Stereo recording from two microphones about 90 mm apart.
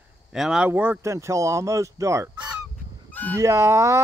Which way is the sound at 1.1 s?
35° right (ahead or behind).